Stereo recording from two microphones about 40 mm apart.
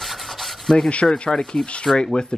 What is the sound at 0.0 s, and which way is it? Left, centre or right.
Rub, centre.